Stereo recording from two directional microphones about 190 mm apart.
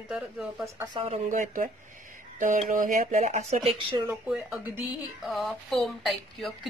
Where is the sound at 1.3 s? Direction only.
45° right (ahead or behind).